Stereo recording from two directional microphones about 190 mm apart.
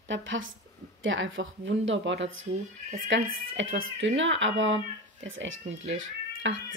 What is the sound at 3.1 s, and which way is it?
Speech, 85° right.